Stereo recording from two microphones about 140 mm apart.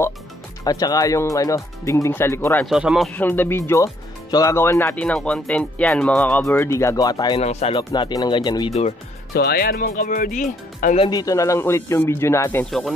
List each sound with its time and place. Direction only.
0.7 s speech: 25° left (ahead or behind)
2.6 s speech: 5° right (ahead or behind)
3.1 s speech: 15° left (ahead or behind); by 7.3 s 30° left (ahead or behind)
7.3 s speech: 50° left (ahead or behind)
7.7 s speech: 35° left (ahead or behind)
9.3 s speech: 90° left; by 11.0 s 65° left (ahead or behind)
11.0 s speech: 30° left (ahead or behind)